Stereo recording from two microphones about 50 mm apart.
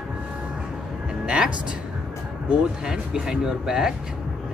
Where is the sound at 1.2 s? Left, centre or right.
Centre.